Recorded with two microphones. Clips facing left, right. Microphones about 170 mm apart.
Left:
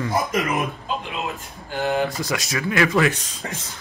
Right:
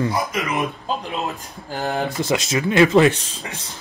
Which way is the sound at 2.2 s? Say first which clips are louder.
Right 5 dB; 25° right (ahead or behind).